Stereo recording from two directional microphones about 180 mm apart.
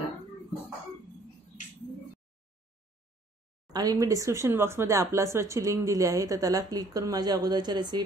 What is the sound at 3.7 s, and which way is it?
Speech, 20° right (ahead or behind).